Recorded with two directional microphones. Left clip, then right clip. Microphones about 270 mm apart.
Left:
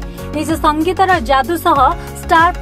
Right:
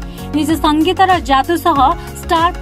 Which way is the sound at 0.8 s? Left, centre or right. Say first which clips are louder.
Right 1 dB; right.